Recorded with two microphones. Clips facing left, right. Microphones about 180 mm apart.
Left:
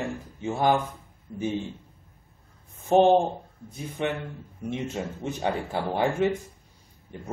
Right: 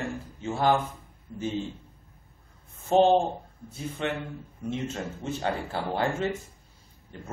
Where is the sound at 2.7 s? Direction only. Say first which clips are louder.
Left 2 dB; 15° left (ahead or behind).